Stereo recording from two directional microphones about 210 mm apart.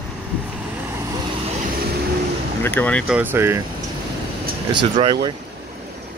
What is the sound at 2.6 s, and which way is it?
Speech, 10° left (ahead or behind).